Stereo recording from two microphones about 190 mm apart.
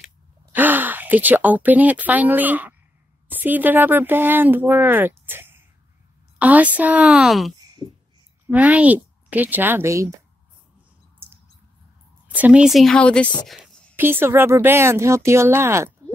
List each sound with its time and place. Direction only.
0.0 s gasp: 10° right (ahead or behind)
3.3 s speech: 10° right (ahead or behind)
7.6 s a sound: 20° right (ahead or behind)
8.5 s a woman's voice: 10° right (ahead or behind)
12.3 s speech: 10° right (ahead or behind)
13.5 s a sound: centre (ahead or behind)
13.9 s speech: 10° right (ahead or behind)